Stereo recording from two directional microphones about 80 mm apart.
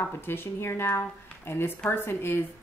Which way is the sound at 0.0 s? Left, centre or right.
Left.